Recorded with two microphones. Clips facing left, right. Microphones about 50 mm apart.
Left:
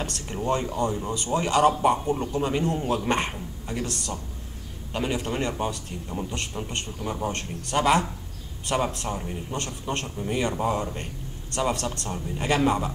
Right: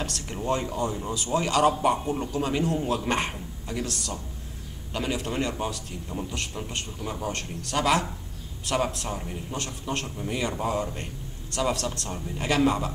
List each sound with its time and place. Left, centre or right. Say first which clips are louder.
0.0 s a man's voice: left 2 dB; centre
0.6 s a man's voice: left 2 dB; centre
1.8 s a man's voice: left 2 dB; centre
2.1 s a man's voice: left 1 dB; centre